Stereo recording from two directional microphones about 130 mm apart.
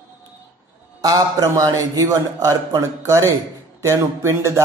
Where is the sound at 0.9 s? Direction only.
30° right (ahead or behind).